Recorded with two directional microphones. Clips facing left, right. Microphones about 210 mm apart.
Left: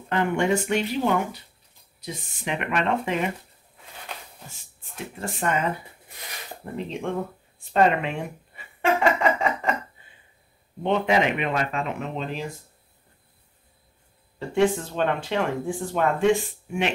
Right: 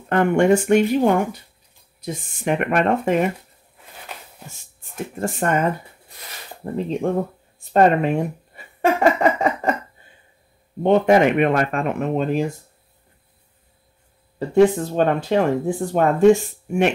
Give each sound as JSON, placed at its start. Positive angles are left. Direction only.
{"t": 0.1, "sound": "speech", "side_deg": -50}
{"t": 4.9, "sound": "speech", "side_deg": -50}
{"t": 6.6, "sound": "speech", "side_deg": -35}
{"t": 10.8, "sound": "speech", "side_deg": -45}
{"t": 14.5, "sound": "speech", "side_deg": -40}